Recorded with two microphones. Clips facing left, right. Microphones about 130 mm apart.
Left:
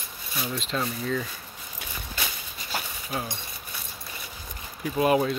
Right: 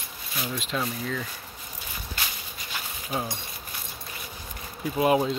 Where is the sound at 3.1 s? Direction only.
15° right (ahead or behind).